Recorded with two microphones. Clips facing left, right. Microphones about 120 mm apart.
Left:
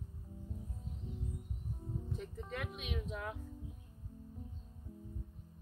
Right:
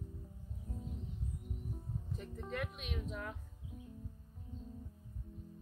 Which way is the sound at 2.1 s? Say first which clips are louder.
Right 4 dB; centre (ahead or behind).